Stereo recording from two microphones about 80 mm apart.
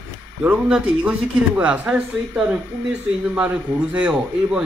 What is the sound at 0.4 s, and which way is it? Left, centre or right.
Speech, centre.